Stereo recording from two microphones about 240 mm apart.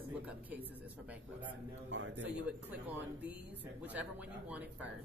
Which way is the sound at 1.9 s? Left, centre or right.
Right.